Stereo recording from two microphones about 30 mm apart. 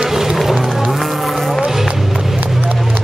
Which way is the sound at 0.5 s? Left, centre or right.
Right.